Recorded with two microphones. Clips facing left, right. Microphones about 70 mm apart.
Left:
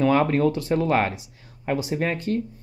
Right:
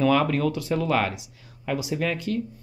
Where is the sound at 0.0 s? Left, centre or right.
Left.